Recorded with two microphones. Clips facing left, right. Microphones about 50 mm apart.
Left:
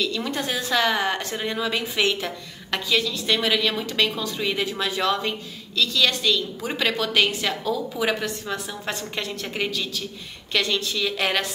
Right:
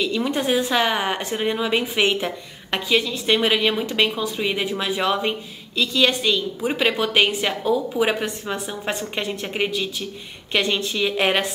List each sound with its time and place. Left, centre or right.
0.0 s a woman's voice: centre